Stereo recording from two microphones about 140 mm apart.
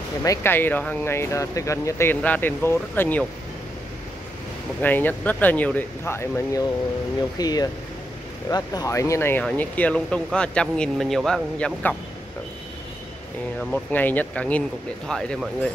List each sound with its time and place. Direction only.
0.2 s speech: 20° left (ahead or behind)
4.8 s speech: 10° left (ahead or behind)
13.6 s speech: 10° left (ahead or behind)